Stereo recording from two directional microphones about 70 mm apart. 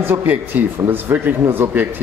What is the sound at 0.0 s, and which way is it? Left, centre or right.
Speech, right.